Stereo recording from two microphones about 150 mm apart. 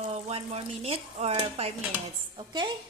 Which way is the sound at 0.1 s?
45° right (ahead or behind).